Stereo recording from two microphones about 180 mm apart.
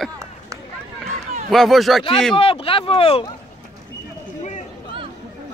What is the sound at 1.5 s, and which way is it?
Speech, centre (ahead or behind).